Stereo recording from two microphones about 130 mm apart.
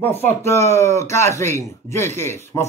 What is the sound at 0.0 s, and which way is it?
Speech, 15° left (ahead or behind).